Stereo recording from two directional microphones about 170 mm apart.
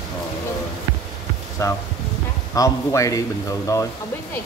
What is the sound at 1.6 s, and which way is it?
A man's voice, 20° left (ahead or behind).